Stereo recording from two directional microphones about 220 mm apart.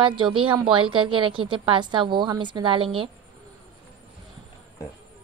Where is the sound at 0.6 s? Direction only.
25° right (ahead or behind).